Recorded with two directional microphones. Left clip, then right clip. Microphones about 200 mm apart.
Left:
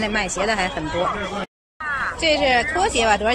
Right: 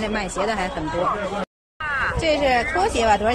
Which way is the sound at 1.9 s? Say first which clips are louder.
Right 1 dB; 40° right (ahead or behind).